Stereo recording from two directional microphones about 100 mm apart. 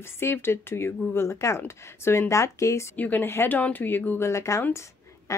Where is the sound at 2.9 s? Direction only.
15° left (ahead or behind).